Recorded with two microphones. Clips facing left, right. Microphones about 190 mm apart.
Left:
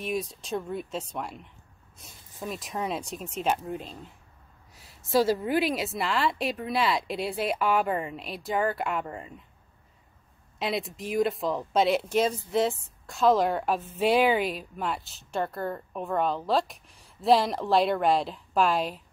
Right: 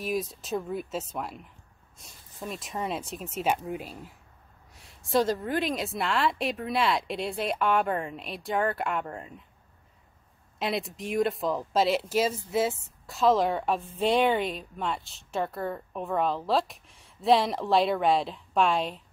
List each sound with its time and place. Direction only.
0.0 s speech: centre (ahead or behind)
10.6 s speech: centre (ahead or behind)